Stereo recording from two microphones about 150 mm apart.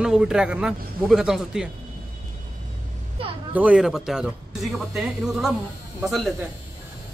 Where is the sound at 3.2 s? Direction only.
40° right (ahead or behind).